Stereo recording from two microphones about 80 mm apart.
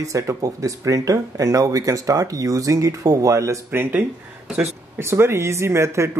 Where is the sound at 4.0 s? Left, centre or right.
Centre.